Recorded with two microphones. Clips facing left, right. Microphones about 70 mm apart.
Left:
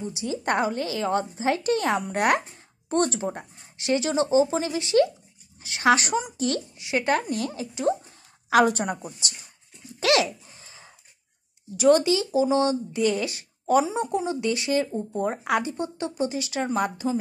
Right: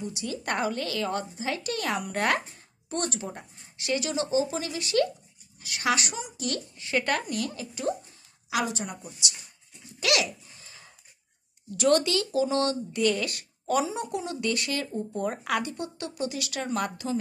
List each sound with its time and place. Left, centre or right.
0.0 s speech: left
2.9 s speech: left
6.8 s speech: centre
8.5 s a woman's voice: left
9.9 s a sound: left
11.7 s speech: centre